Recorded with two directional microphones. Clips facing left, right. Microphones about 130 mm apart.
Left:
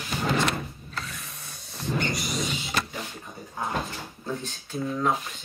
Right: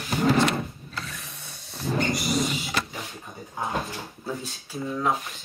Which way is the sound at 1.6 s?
Centre (ahead or behind).